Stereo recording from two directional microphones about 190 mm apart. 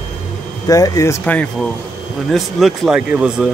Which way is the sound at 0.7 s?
20° left (ahead or behind).